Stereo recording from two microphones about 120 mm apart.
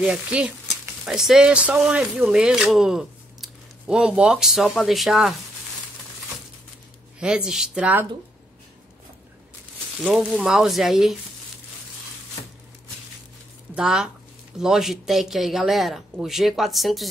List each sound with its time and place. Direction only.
0.0 s a woman's voice: 10° right (ahead or behind)
7.2 s a woman's voice: 5° right (ahead or behind)
10.1 s speech: 5° right (ahead or behind)
13.7 s speech: 5° right (ahead or behind)